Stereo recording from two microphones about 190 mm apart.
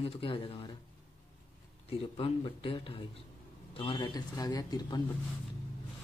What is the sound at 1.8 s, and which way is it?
Speech, 30° left (ahead or behind).